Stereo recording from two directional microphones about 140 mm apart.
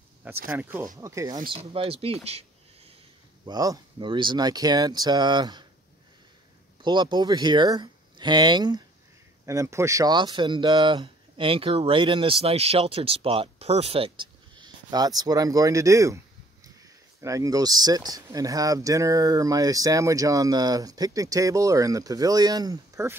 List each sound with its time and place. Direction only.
0.5 s speech: 10° right (ahead or behind)
0.9 s speech: 25° right (ahead or behind)
1.7 s speech: 40° right (ahead or behind)
2.2 s a sound: 45° right (ahead or behind)
3.4 s speech: 25° right (ahead or behind)
6.8 s speech: 30° right (ahead or behind)
9.5 s speech: 20° right (ahead or behind)